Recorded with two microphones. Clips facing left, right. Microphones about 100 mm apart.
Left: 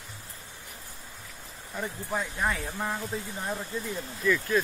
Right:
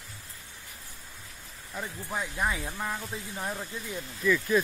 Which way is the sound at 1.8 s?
Centre (ahead or behind).